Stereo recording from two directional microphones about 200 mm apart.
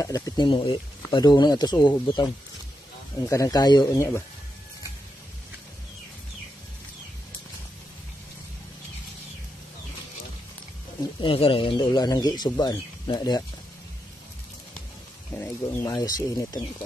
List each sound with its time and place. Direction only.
0.0 s speech: 15° left (ahead or behind)
11.1 s speech: 25° left (ahead or behind)
15.3 s speech: 10° left (ahead or behind)